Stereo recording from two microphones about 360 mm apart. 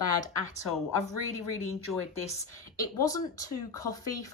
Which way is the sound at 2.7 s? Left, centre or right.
Centre.